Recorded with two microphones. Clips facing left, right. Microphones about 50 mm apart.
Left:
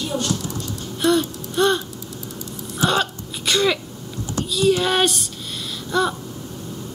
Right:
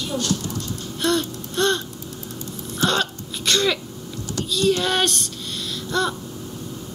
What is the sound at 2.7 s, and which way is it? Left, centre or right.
Throat clearing, centre.